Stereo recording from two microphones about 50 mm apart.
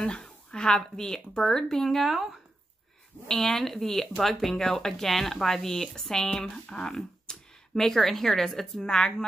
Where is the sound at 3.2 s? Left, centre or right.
Centre.